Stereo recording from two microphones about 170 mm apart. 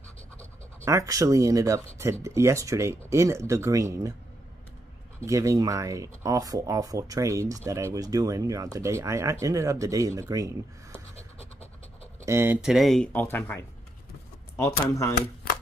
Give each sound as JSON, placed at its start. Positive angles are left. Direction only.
{"t": 0.8, "sound": "speech", "side_deg": -20}
{"t": 5.2, "sound": "speech", "side_deg": -15}
{"t": 11.1, "sound": "scratch", "side_deg": 35}
{"t": 12.3, "sound": "speech", "side_deg": -15}
{"t": 12.6, "sound": "speech", "side_deg": 0}